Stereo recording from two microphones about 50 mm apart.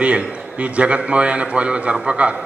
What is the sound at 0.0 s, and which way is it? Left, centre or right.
A man's voice, right.